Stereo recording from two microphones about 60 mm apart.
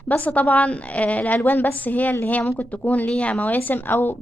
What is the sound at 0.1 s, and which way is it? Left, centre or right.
A woman's voice, left.